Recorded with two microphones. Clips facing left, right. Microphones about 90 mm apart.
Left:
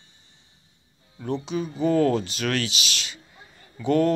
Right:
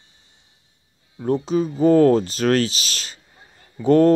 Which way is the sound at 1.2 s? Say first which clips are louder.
Right 7 dB; 40° right (ahead or behind).